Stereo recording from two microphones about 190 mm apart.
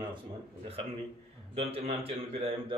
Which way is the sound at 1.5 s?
30° right (ahead or behind).